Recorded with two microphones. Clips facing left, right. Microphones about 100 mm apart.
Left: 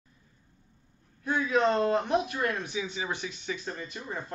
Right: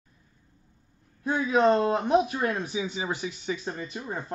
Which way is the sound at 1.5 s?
20° right (ahead or behind).